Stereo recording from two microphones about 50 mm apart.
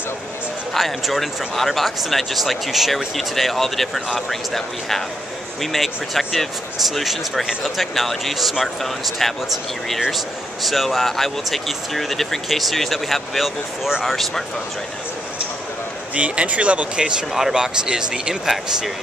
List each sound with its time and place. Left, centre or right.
0.7 s speech: centre
16.2 s speech: right
17.3 s speech: centre